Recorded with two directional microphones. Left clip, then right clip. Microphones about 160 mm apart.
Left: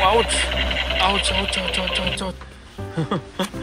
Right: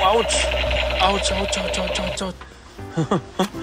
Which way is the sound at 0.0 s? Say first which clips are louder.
Even; 20° right (ahead or behind).